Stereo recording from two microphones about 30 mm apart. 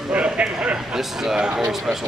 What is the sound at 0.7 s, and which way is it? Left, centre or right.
Speech, centre.